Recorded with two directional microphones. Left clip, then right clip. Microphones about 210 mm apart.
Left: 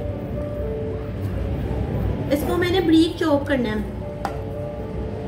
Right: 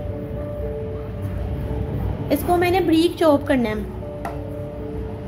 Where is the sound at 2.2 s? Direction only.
45° right (ahead or behind).